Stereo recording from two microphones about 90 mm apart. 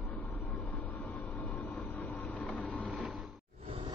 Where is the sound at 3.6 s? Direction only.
90° right.